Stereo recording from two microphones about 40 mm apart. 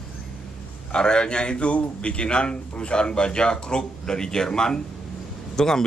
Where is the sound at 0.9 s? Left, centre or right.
Centre.